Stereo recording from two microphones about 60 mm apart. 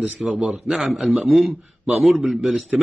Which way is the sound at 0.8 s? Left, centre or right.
Centre.